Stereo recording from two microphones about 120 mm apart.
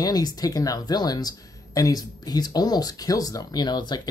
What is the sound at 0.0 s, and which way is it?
Speech, 30° left (ahead or behind).